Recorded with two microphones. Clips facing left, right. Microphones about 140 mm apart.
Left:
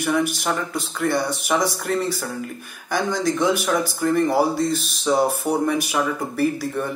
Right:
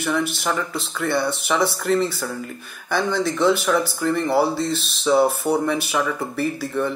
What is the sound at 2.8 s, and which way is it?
Speech, 10° left (ahead or behind).